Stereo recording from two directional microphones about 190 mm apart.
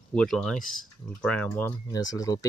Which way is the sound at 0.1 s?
5° left (ahead or behind).